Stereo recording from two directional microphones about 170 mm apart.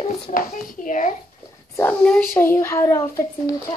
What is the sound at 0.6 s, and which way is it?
Speech, 50° left (ahead or behind).